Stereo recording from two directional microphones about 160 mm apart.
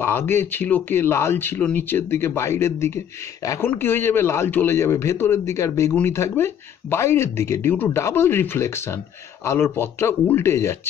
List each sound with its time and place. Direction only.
0.0 s a man's voice: 15° left (ahead or behind)